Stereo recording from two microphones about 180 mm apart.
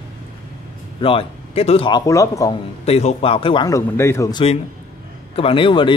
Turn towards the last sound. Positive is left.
turn(degrees=30)  # may be behind; listen again after turning